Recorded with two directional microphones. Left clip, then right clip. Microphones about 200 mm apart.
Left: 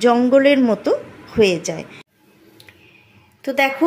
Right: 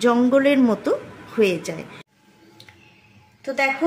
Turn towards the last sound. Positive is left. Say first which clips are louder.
# left 4 dB
turn(degrees=30)  # may be behind; listen again after turning